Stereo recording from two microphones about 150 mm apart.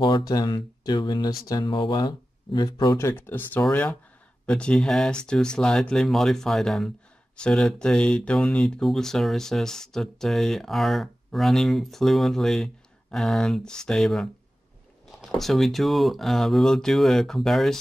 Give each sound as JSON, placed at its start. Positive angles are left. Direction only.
{"t": 0.3, "sound": "speech", "side_deg": 25}
{"t": 3.0, "sound": "speech", "side_deg": 15}